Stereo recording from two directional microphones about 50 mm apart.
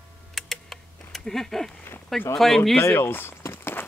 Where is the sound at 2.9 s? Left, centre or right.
Left.